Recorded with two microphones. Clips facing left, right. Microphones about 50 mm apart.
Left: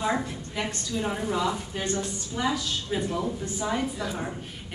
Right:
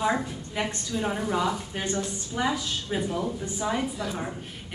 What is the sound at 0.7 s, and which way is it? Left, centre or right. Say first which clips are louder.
A woman's voice: left 2 dB; centre.